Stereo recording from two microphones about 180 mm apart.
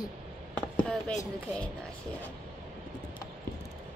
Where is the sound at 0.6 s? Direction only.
5° left (ahead or behind).